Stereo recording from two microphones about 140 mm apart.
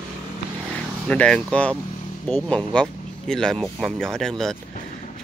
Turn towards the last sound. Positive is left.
turn(degrees=5)  # may be behind; listen again after turning